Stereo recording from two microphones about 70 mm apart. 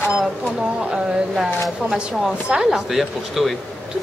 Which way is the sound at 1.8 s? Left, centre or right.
Centre.